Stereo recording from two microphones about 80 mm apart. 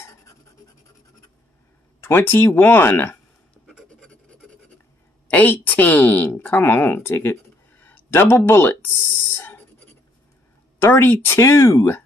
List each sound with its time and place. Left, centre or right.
2.0 s speech: left
4.1 s filing: centre
5.3 s speech: left
10.8 s speech: left